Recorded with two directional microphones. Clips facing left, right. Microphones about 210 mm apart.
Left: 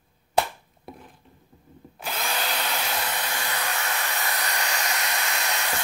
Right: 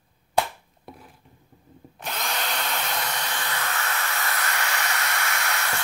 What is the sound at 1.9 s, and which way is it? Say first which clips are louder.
Drill: left 1 dB; 5° left (ahead or behind).